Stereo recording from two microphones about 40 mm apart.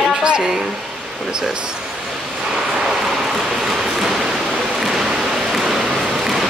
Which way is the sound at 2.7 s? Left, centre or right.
Centre.